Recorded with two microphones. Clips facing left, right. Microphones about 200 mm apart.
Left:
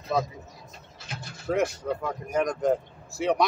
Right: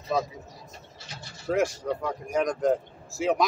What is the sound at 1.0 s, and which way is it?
Mechanisms, 55° left (ahead or behind).